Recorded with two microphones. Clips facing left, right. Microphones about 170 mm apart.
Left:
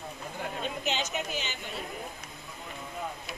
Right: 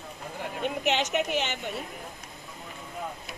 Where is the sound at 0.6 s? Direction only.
70° right (ahead or behind).